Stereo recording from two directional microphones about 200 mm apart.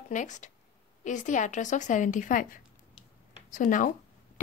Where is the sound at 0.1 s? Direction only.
40° left (ahead or behind).